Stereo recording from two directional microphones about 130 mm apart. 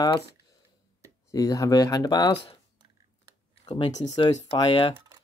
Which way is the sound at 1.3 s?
25° left (ahead or behind).